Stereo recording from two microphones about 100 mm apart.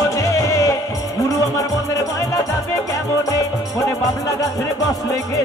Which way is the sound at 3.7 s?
35° left (ahead or behind).